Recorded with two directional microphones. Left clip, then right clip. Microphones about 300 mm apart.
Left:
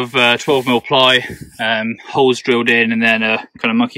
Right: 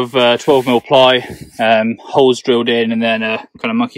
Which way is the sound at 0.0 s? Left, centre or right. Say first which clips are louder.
Right 1 dB; centre.